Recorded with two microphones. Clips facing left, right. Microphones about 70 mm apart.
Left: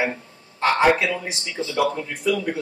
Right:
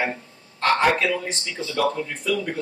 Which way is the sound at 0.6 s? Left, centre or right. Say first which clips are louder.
Left 2 dB; centre.